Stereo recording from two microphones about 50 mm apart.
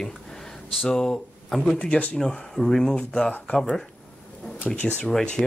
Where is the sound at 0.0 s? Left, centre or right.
Centre.